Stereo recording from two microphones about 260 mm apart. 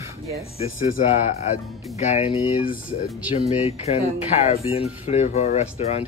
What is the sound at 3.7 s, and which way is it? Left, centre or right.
Speech, left.